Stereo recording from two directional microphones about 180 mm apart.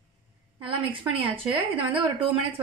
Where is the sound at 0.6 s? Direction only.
30° right (ahead or behind).